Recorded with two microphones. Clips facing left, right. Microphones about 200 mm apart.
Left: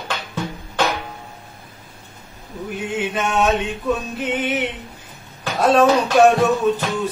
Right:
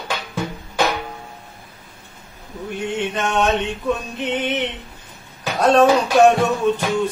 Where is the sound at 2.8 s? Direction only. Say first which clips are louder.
Even; 5° left (ahead or behind).